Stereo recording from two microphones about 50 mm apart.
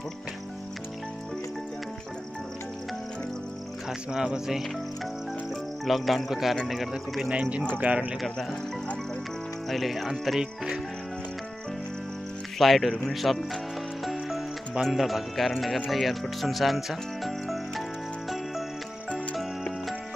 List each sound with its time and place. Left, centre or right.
4.1 s speech: centre
5.9 s speech: centre
6.9 s speech: centre; by 8.1 s right
9.7 s speech: centre
10.4 s speech: centre
12.5 s speech: centre
14.8 s speech: centre